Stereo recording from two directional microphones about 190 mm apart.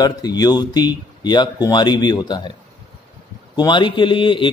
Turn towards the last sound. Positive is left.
turn(degrees=25)  # may be behind; listen again after turning